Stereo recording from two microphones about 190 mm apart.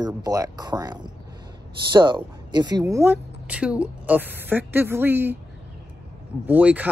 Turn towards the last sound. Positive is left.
turn(degrees=-10)  # may be behind; listen again after turning